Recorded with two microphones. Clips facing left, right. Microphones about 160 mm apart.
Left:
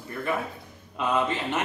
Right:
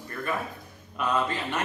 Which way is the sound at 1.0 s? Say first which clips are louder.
Left 2 dB; 20° left (ahead or behind).